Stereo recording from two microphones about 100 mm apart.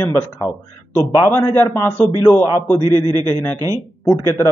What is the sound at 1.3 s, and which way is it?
Speech, 20° left (ahead or behind).